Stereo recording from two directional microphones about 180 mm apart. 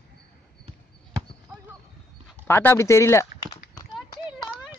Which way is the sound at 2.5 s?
15° left (ahead or behind).